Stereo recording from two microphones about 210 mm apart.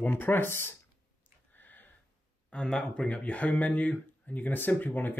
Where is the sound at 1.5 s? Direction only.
10° left (ahead or behind).